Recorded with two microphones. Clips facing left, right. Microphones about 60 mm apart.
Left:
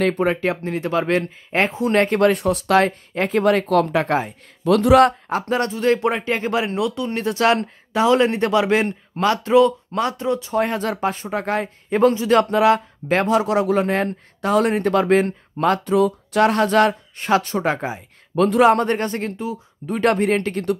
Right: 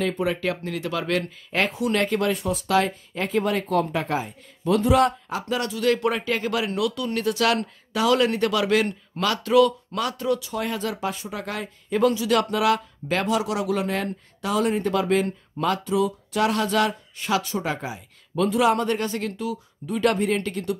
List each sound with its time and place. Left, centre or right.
0.0 s speech: left
5.3 s speech: left
19.9 s speech: left